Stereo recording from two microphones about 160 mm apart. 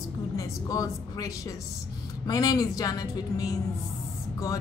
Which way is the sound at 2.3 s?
25° left (ahead or behind).